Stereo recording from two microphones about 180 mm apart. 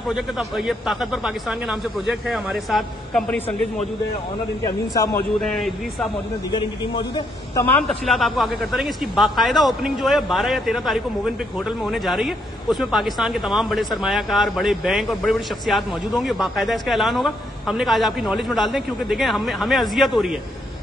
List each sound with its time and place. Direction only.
0.1 s speech: centre (ahead or behind)
4.6 s a man's voice: 20° left (ahead or behind)
5.4 s speech: centre (ahead or behind)
6.5 s a man's voice: 25° left (ahead or behind)
7.6 s speech: centre (ahead or behind)